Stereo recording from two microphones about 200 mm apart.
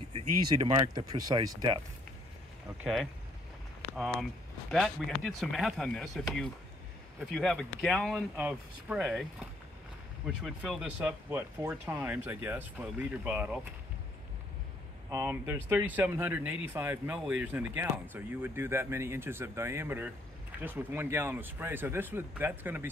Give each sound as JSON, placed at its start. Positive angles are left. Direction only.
{"t": 0.1, "sound": "speech", "side_deg": -25}
{"t": 2.8, "sound": "speech", "side_deg": 0}
{"t": 7.3, "sound": "speech", "side_deg": 0}
{"t": 10.2, "sound": "speech", "side_deg": 0}
{"t": 15.0, "sound": "speech", "side_deg": -15}